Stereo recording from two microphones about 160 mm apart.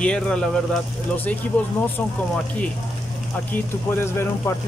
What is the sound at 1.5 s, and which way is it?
Speech, 10° left (ahead or behind).